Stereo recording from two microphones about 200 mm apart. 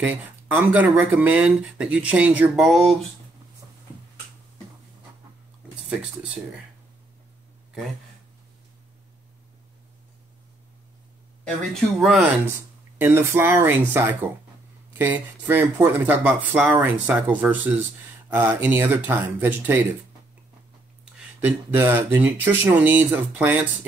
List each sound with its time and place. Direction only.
0.0 s speech: 10° right (ahead or behind)
5.9 s speech: 5° right (ahead or behind)
11.4 s speech: centre (ahead or behind)
13.0 s speech: 10° right (ahead or behind)
21.0 s speech: 10° right (ahead or behind)